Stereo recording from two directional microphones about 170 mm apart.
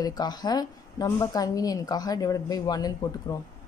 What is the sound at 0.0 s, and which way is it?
Speech, 25° left (ahead or behind).